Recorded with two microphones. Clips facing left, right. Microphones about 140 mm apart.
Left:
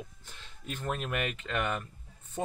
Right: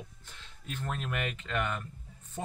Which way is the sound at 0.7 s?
10° left (ahead or behind).